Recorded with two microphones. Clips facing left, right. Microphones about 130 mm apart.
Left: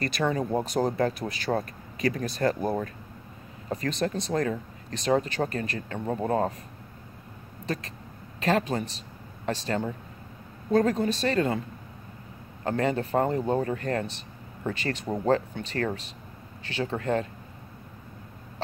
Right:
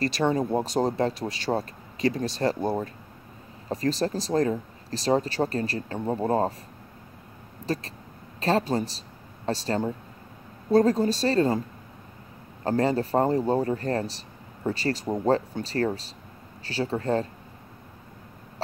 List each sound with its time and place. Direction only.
0.0 s speech: 30° right (ahead or behind)
7.6 s speech: 35° right (ahead or behind)
12.6 s speech: 35° right (ahead or behind)